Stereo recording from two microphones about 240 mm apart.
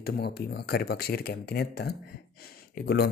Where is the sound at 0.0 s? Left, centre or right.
Left.